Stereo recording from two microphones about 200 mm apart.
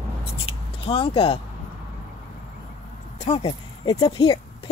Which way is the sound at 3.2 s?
35° left (ahead or behind).